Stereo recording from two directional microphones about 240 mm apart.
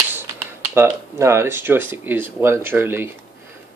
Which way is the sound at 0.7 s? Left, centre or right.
Centre.